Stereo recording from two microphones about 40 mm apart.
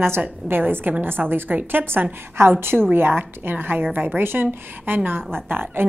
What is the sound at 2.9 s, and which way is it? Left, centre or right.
A woman's voice, right.